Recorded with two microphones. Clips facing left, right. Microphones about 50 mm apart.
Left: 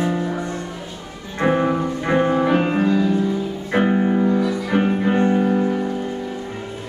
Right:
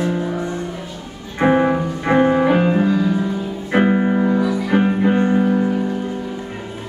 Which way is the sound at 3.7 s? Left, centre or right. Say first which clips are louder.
Right 2 dB; right.